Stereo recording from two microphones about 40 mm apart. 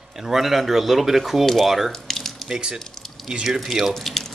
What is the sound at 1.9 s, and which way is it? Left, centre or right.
Water tap, centre.